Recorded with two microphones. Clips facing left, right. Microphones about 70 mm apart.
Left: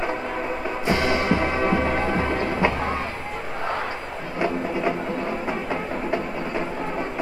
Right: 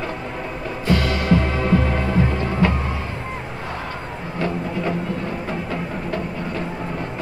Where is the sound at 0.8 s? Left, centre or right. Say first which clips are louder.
Right 2 dB; left.